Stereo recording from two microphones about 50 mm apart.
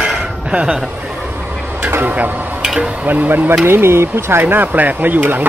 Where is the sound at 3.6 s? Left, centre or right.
Right.